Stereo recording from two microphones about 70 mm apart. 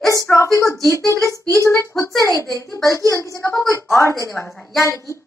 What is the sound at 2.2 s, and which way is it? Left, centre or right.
A child's voice, left.